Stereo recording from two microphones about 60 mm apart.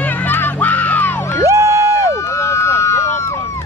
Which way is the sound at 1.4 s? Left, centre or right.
Right.